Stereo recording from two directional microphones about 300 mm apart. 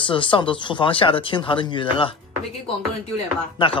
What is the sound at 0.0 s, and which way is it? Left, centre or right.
Speech, centre.